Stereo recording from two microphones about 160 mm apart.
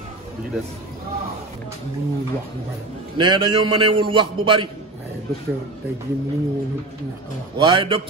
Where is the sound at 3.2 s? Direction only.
30° right (ahead or behind).